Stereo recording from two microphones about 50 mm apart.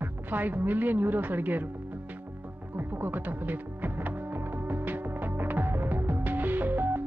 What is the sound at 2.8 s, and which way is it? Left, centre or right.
Music, right.